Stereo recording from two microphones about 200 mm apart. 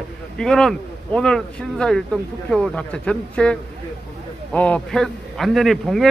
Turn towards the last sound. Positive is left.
turn(degrees=0)  # may be behind; listen again after turning